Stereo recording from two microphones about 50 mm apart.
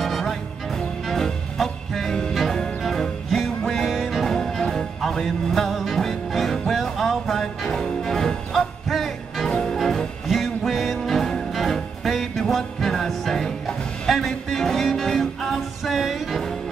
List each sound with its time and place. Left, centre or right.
0.0 s music: centre